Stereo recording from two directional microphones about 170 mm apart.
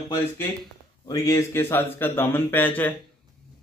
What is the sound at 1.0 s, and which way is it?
Speech, 20° left (ahead or behind).